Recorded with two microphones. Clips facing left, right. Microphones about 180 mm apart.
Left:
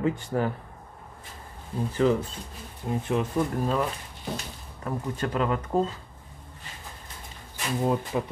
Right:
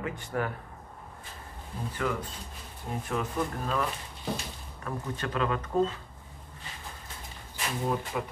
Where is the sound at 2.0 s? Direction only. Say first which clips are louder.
Left 9 dB; 25° left (ahead or behind).